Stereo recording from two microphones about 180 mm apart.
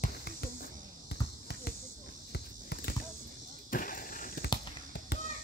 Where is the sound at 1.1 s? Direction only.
60° left (ahead or behind).